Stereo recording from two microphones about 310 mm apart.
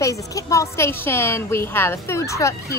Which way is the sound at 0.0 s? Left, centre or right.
Centre.